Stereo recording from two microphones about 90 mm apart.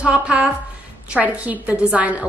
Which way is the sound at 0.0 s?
15° right (ahead or behind).